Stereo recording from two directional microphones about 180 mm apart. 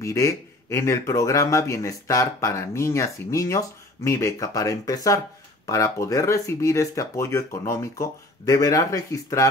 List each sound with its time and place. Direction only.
0.0 s speech: 15° left (ahead or behind)